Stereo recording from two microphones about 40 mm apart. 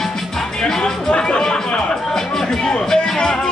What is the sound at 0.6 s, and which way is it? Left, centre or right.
Music, centre.